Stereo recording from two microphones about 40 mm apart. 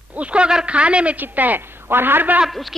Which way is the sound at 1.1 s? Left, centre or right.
Right.